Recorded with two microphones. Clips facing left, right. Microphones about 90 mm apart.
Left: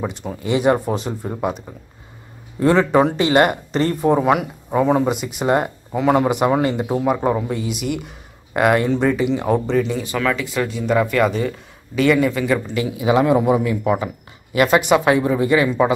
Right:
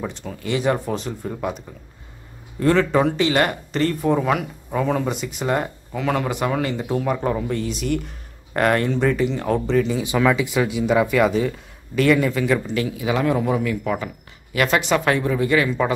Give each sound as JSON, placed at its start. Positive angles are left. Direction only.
{"t": 0.0, "sound": "speech", "side_deg": 20}
{"t": 2.6, "sound": "speech", "side_deg": 15}
{"t": 3.2, "sound": "speech", "side_deg": 30}
{"t": 3.4, "sound": "speech", "side_deg": 20}
{"t": 10.0, "sound": "speech", "side_deg": -10}
{"t": 12.9, "sound": "speech", "side_deg": 20}